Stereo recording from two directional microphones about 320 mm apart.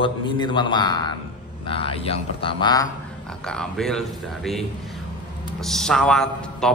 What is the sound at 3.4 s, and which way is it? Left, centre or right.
A man's voice, centre.